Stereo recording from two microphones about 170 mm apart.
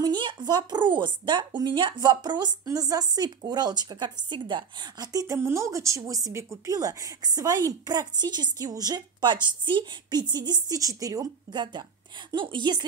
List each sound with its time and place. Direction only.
0.0 s speech: 25° right (ahead or behind)